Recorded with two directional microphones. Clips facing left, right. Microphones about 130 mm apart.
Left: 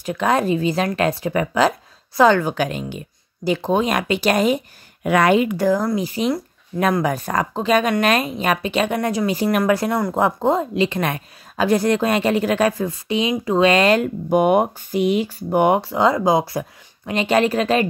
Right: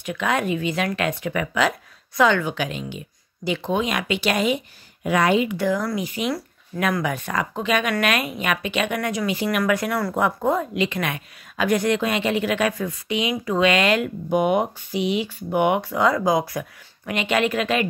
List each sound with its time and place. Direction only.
0.0 s a woman's voice: 35° left (ahead or behind)
5.0 s speech: 60° left (ahead or behind); by 5.8 s 45° left (ahead or behind)
5.8 s a woman's voice: 30° left (ahead or behind)